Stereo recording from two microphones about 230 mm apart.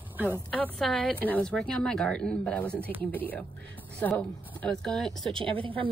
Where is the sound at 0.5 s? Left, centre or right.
Centre.